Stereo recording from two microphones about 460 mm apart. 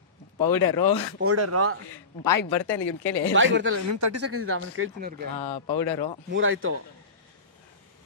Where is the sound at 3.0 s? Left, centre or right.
Centre.